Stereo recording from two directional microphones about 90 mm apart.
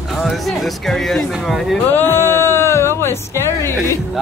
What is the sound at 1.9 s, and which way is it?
Speech, 25° left (ahead or behind).